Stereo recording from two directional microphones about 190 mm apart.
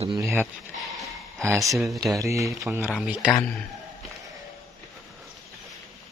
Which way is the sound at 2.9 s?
5° right (ahead or behind).